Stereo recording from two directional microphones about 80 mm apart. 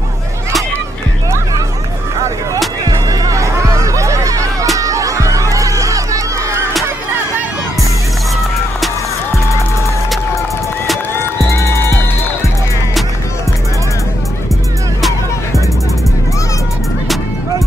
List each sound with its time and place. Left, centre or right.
2.8 s music: right
11.4 s music: left